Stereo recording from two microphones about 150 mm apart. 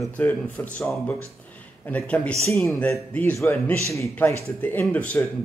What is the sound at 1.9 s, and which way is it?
Speech, 10° left (ahead or behind).